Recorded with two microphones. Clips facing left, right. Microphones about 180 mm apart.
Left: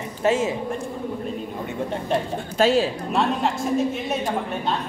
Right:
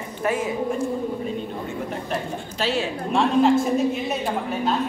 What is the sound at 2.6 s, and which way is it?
Speech, 45° left (ahead or behind).